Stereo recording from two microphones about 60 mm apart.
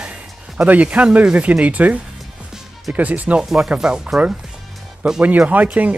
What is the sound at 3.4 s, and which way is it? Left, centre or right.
Speech, centre.